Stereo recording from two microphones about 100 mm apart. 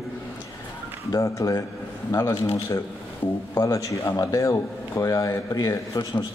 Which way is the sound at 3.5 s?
30° left (ahead or behind).